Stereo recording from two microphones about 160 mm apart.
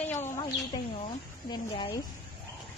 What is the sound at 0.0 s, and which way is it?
Bird, 15° left (ahead or behind).